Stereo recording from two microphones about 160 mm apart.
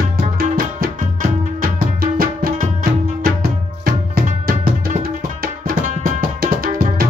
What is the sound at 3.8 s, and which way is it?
Tabla, 70° right (ahead or behind).